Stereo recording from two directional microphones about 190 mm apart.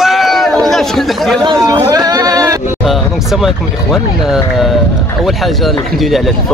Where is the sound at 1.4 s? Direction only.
20° right (ahead or behind).